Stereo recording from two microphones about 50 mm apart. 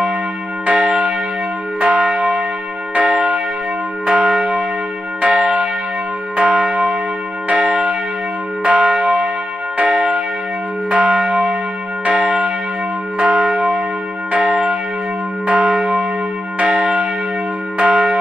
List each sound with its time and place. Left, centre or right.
0.7 s church bell: right
16.5 s church bell: right